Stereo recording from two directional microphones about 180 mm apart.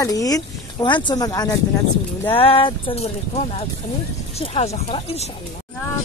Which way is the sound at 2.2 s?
30° left (ahead or behind).